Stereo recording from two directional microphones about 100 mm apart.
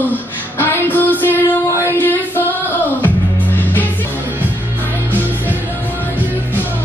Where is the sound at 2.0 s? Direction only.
20° left (ahead or behind).